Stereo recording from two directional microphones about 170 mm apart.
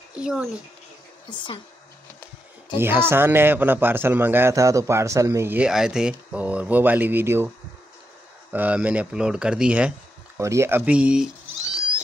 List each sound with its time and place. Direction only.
0.2 s speech: 5° right (ahead or behind)
1.2 s speech: 30° left (ahead or behind)
2.8 s a man's voice: 15° right (ahead or behind)
11.6 s cat: 5° right (ahead or behind)